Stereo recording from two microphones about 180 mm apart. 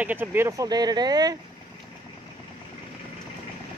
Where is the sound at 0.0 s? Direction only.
10° right (ahead or behind).